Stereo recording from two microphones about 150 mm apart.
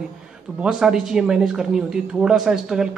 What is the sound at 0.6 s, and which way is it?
Speech, 5° right (ahead or behind).